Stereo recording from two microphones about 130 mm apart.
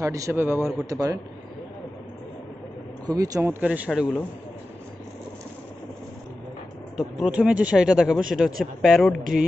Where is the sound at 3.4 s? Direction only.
10° right (ahead or behind).